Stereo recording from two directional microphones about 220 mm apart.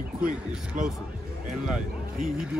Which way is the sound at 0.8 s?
35° right (ahead or behind).